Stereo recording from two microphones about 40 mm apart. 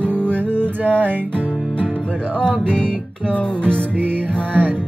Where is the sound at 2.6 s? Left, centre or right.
Left.